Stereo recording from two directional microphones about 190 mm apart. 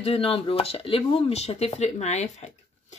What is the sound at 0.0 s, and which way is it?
Speech, 30° left (ahead or behind).